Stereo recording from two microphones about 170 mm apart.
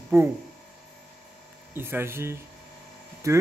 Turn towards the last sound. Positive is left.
turn(degrees=-20)  # may be behind; listen again after turning